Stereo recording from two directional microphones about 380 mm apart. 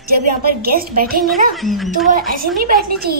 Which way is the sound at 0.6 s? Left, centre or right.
Right.